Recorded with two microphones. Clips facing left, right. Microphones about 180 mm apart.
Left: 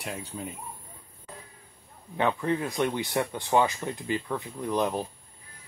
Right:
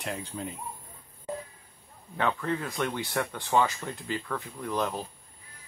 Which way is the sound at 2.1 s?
20° left (ahead or behind).